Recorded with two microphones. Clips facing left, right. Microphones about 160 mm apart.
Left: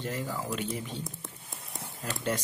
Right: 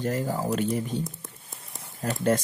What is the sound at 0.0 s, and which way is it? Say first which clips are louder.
Speech: right 7 dB; 45° right (ahead or behind).